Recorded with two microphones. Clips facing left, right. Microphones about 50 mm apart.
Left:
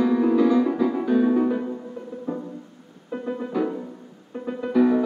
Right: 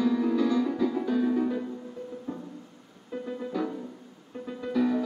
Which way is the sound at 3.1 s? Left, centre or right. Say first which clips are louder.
Left 5 dB; left.